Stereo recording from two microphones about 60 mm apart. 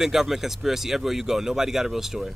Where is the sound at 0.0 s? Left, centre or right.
Centre.